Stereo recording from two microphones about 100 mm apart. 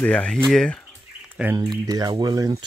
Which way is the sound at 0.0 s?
10° left (ahead or behind).